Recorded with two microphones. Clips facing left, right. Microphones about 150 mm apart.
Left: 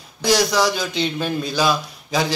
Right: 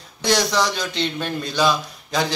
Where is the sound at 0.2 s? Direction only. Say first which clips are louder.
Left 2 dB; 5° left (ahead or behind).